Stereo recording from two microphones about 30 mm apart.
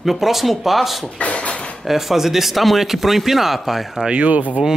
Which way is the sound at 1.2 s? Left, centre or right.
Left.